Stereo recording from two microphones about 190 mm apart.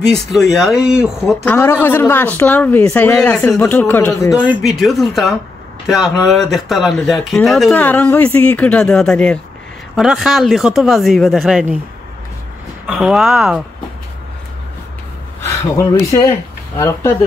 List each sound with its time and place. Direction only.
0.1 s speech: centre (ahead or behind)
1.4 s speech: 10° left (ahead or behind)
4.5 s speech: centre (ahead or behind)
12.8 s speech: 5° right (ahead or behind)
15.4 s speech: 15° left (ahead or behind)